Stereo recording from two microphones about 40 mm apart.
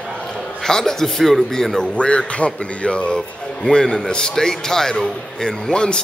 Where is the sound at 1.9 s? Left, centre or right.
Left.